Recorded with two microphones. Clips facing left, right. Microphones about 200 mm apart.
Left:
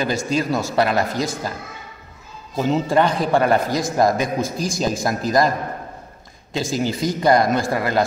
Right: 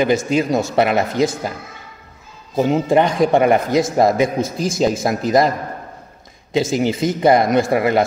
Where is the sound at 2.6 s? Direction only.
20° right (ahead or behind).